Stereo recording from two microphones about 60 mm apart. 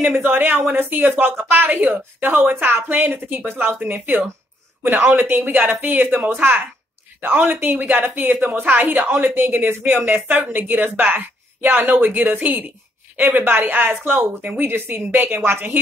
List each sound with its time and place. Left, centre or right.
0.1 s a woman's voice: right